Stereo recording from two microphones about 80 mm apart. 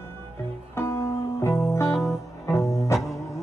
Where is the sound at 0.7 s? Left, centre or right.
Left.